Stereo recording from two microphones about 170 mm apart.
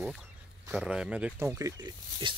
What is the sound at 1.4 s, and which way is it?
Speech, 20° right (ahead or behind).